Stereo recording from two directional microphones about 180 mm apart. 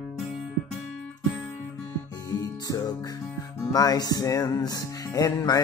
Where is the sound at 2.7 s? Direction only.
20° left (ahead or behind).